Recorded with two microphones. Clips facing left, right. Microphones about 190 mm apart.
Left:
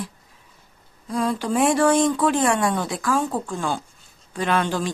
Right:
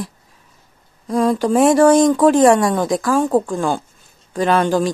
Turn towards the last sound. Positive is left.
turn(degrees=-40)  # may be behind; listen again after turning